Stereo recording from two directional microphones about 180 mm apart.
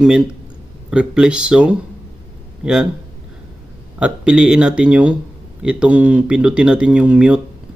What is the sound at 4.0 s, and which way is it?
Speech, 5° right (ahead or behind).